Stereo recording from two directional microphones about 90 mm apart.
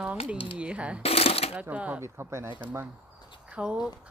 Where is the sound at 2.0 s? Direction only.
30° right (ahead or behind).